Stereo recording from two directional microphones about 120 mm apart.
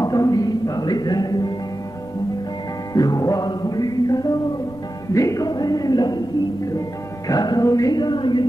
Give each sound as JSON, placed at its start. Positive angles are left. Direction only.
{"t": 0.0, "sound": "a sound", "side_deg": 30}
{"t": 2.9, "sound": "music", "side_deg": 30}
{"t": 7.2, "sound": "music", "side_deg": 35}